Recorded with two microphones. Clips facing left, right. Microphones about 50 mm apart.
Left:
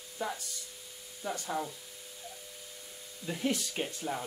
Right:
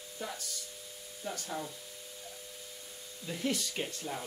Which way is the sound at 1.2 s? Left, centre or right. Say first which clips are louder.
Left 4 dB; centre.